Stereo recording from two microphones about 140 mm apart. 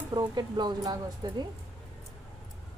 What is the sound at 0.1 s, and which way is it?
Speech, 30° right (ahead or behind).